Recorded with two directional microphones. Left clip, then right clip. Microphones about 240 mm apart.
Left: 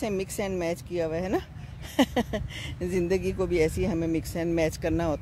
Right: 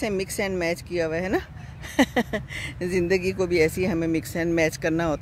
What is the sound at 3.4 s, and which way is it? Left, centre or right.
Speech, centre.